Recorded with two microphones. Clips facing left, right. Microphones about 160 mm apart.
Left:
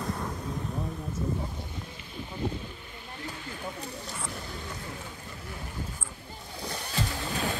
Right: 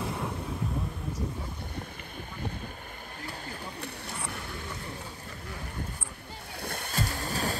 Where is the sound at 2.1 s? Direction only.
55° right (ahead or behind).